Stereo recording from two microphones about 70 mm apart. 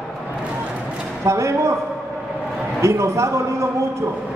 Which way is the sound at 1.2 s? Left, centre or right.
Right.